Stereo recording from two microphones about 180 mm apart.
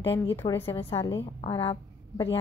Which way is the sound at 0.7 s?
30° left (ahead or behind).